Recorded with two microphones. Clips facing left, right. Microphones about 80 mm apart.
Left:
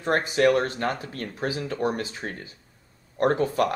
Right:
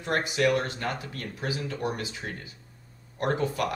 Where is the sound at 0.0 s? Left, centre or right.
Left.